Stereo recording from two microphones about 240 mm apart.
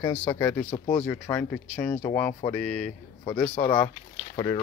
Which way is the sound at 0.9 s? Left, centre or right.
Centre.